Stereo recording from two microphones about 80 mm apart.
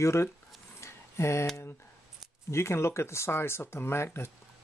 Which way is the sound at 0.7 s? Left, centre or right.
Left.